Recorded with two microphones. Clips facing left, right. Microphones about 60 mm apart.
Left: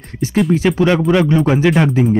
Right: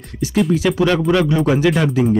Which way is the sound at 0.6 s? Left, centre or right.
Left.